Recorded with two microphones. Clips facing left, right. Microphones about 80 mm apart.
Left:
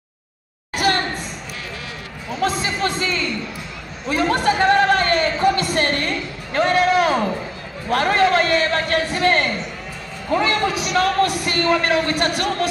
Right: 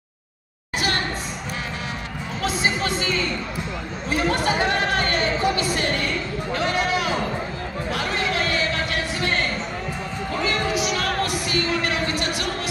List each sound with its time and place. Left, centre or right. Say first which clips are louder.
2.6 s speech: left 1 dB; left
4.1 s chatter: left 4 dB; left
5.8 s a sound: left 3 dB; left